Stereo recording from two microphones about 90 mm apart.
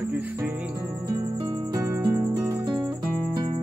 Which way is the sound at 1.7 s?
40° right (ahead or behind).